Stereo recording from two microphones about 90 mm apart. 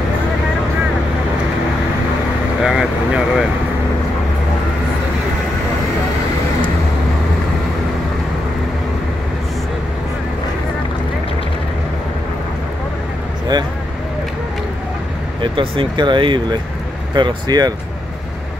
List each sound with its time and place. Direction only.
2.6 s vehicle: 5° right (ahead or behind)
15.4 s speech: 80° right; by 17.7 s 50° right (ahead or behind)